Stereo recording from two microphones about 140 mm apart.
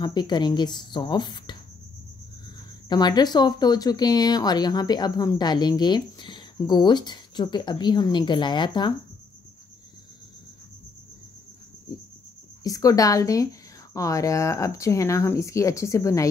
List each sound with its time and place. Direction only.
0.0 s speech: 30° left (ahead or behind)
2.9 s speech: 30° left (ahead or behind)
12.6 s speech: 25° left (ahead or behind)